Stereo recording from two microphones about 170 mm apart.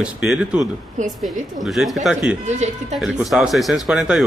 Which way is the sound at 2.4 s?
40° right (ahead or behind).